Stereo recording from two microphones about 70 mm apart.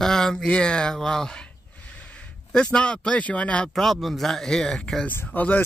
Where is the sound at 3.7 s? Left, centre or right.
Centre.